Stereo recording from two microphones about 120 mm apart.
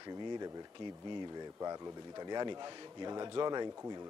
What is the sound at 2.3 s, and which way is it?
A man's voice, 35° right (ahead or behind).